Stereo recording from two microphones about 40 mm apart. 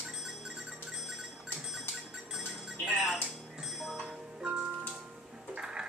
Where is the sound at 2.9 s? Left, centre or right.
Centre.